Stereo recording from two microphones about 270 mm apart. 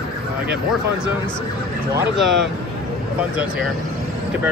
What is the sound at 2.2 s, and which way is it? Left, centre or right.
Speech, centre.